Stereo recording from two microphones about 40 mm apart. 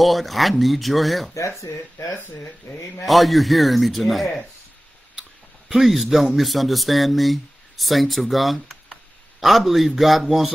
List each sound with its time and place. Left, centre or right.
0.0 s speech: centre
1.7 s speech: left
3.1 s speech: centre
5.8 s speech: centre